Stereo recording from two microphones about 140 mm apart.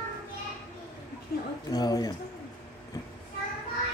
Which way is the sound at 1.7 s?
25° left (ahead or behind).